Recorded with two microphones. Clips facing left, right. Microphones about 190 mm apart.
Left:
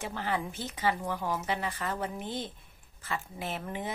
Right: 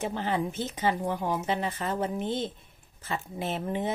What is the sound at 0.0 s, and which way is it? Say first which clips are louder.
Speech: right 4 dB; 25° right (ahead or behind).